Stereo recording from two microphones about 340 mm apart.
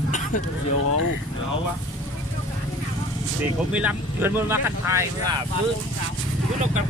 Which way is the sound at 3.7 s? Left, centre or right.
Centre.